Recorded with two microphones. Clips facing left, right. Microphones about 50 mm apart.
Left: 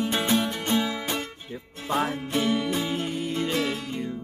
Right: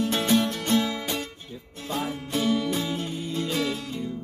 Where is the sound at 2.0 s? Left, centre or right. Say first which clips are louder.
Left 1 dB; left.